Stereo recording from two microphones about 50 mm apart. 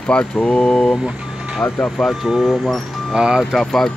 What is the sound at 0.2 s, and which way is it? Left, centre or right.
Speech, left.